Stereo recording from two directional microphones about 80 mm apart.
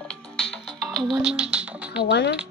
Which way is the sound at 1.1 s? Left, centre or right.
Centre.